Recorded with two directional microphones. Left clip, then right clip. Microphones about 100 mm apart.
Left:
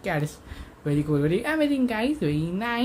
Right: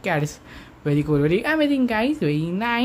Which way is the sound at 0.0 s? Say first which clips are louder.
Right 5 dB; 30° right (ahead or behind).